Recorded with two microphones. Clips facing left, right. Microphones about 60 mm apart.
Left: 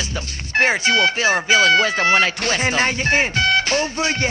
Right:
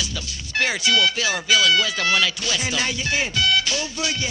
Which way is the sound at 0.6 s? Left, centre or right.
Left.